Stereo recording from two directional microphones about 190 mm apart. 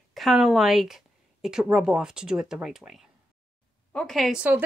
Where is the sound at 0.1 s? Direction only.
Centre (ahead or behind).